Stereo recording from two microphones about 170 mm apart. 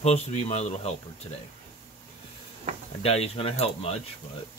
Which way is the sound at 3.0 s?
35° left (ahead or behind).